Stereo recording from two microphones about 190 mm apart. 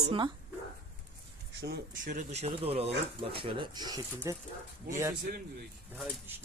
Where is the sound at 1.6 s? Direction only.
50° right (ahead or behind); by 5.1 s 15° right (ahead or behind).